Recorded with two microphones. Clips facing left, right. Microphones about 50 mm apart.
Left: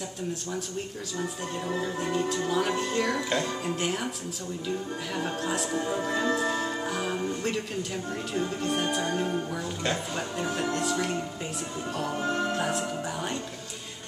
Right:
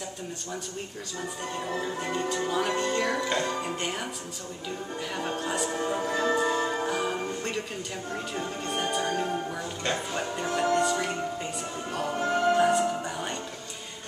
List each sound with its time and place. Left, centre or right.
1.8 s speech: centre
12.2 s music: right
12.5 s music: centre